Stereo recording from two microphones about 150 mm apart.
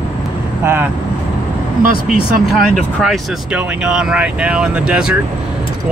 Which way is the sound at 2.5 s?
Centre (ahead or behind).